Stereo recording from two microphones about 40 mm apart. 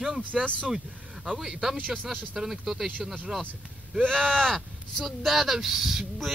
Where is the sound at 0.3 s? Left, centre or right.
Centre.